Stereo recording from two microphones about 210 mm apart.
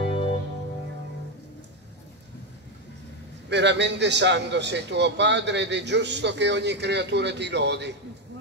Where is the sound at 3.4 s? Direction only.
55° right (ahead or behind).